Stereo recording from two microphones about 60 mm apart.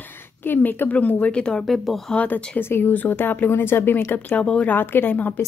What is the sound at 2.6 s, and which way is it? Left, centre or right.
Speech, left.